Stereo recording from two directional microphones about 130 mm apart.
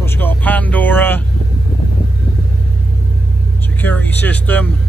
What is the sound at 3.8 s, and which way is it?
Speech, 15° left (ahead or behind).